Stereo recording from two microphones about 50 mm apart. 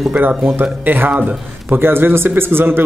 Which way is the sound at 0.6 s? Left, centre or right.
Right.